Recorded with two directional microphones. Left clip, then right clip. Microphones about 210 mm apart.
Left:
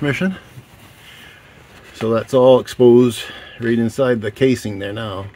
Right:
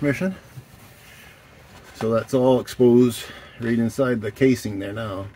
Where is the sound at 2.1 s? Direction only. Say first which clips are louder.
Left 7 dB; 35° left (ahead or behind).